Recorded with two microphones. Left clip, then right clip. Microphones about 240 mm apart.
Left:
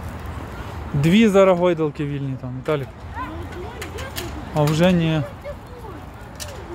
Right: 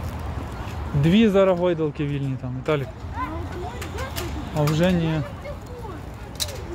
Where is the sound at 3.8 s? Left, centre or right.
Centre.